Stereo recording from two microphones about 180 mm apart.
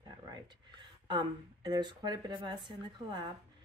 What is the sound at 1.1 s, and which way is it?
Speech, 25° right (ahead or behind).